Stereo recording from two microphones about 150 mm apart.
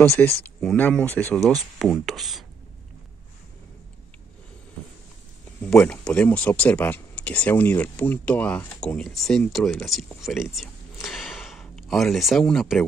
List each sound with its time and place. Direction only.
0.1 s speech: 15° left (ahead or behind)
1.4 s speech: centre (ahead or behind)
5.6 s speech: 5° left (ahead or behind)